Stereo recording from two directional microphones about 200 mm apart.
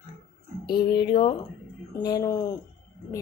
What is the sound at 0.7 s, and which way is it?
Speech, 20° left (ahead or behind).